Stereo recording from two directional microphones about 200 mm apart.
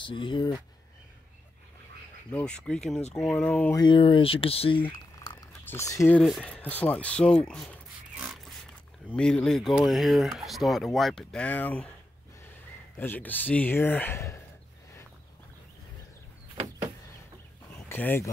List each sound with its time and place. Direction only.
0.0 s speech: 25° left (ahead or behind)
2.3 s speech: 5° left (ahead or behind)
3.8 s speech: 25° left (ahead or behind); by 7.7 s 5° left (ahead or behind)
9.1 s speech: 5° left (ahead or behind)
12.9 s speech: 10° left (ahead or behind)
17.7 s speech: 10° left (ahead or behind)